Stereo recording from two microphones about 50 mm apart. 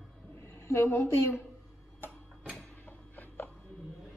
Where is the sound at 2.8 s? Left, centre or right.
Left.